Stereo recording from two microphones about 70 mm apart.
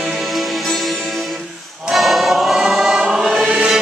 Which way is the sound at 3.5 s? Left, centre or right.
Centre.